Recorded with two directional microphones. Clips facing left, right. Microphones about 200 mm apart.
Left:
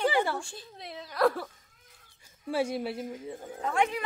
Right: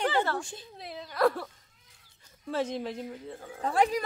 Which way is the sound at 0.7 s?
Centre (ahead or behind).